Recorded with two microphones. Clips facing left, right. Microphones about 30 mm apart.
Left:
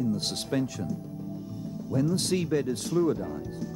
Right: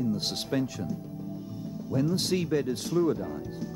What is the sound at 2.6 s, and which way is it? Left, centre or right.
A man's voice, centre.